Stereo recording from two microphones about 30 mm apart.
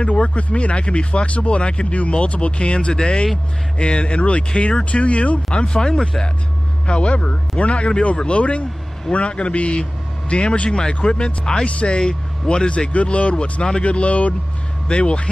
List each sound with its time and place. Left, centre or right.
0.0 s speech: left
1.9 s speech: left
6.9 s speech: left
10.7 s speech: left
11.6 s speech: left
12.0 s speech: left